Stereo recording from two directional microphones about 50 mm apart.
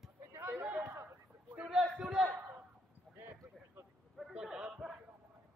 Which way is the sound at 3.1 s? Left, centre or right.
Right.